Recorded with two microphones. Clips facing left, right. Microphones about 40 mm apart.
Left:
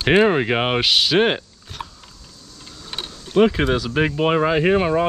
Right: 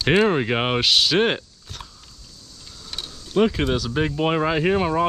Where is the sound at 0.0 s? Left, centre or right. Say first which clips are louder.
Left 3 dB; centre.